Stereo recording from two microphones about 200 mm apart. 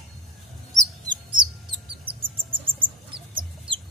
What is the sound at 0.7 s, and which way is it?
Bird, 20° right (ahead or behind).